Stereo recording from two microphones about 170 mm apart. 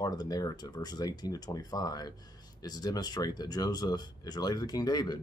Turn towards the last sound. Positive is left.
turn(degrees=25)  # may be behind; listen again after turning